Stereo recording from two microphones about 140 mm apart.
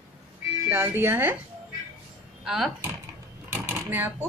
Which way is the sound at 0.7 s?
15° right (ahead or behind).